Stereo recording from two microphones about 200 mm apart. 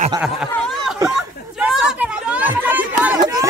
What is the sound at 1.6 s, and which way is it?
Chatter, 5° right (ahead or behind).